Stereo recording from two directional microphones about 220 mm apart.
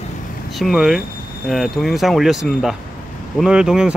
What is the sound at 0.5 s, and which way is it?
Speech, centre (ahead or behind).